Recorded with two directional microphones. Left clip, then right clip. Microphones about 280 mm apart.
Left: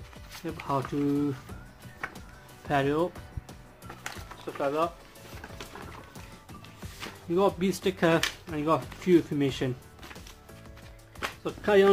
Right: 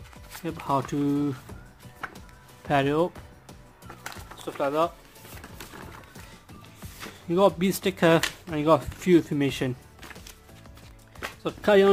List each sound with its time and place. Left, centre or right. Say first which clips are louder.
0.4 s speech: right 4 dB; right
2.7 s speech: right 3 dB; right
3.4 s music: even; centre
4.6 s speech: right 3 dB; right
7.2 s speech: right 4 dB; right
11.6 s speech: right 3 dB; right